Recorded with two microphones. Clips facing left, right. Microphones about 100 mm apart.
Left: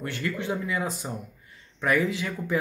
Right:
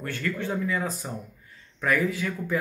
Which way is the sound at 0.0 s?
20° left (ahead or behind).